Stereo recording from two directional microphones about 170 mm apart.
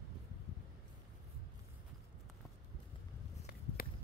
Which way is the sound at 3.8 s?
60° left (ahead or behind).